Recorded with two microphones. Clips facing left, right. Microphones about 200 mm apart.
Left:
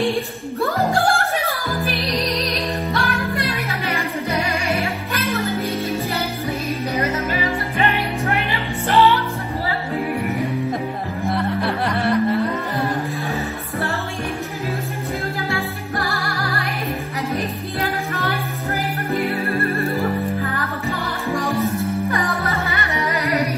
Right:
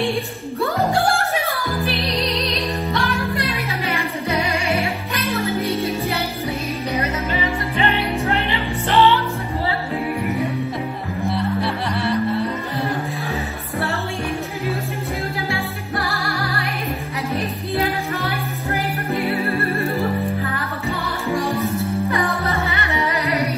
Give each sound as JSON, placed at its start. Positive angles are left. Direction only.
{"t": 0.9, "sound": "music", "side_deg": 0}
{"t": 3.0, "sound": "music", "side_deg": 0}
{"t": 7.9, "sound": "music", "side_deg": 15}
{"t": 11.2, "sound": "music", "side_deg": 55}